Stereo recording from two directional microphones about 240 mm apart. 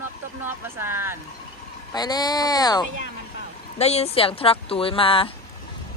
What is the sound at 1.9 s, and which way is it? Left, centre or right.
Speech, centre.